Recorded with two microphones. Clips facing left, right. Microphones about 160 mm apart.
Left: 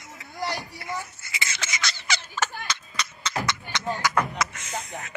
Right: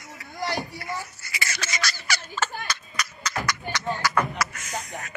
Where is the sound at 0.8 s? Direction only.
20° left (ahead or behind).